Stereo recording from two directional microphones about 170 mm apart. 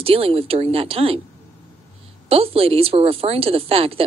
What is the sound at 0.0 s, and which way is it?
A woman's voice, 35° right (ahead or behind).